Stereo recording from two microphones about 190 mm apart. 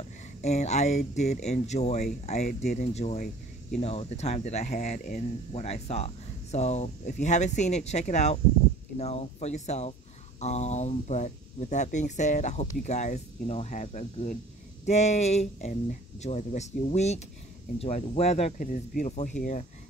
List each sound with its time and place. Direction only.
0.4 s speech: 35° left (ahead or behind)